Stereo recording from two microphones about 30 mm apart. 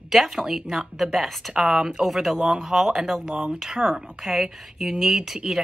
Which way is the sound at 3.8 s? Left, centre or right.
Right.